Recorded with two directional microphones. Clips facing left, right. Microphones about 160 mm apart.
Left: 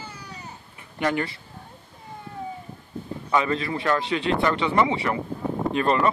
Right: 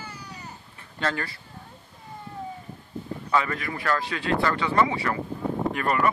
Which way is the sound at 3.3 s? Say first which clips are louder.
Left 3 dB; 20° left (ahead or behind).